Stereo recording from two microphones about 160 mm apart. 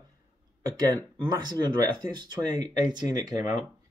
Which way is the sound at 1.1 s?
25° right (ahead or behind).